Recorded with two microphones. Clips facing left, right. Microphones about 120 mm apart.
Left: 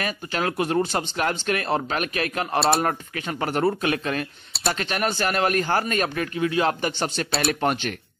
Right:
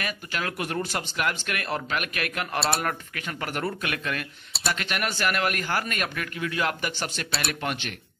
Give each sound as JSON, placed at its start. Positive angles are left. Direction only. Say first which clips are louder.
{"t": 0.0, "sound": "a man's voice", "louder": "left 5 dB", "side_deg": 35}